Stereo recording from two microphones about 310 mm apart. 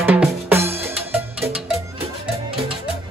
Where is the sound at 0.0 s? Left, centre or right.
Centre.